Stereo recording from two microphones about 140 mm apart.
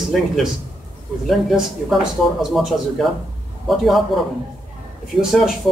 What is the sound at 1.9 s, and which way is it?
Speech, centre (ahead or behind).